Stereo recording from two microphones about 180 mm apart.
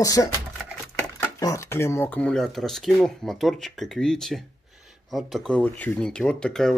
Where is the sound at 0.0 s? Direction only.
20° left (ahead or behind).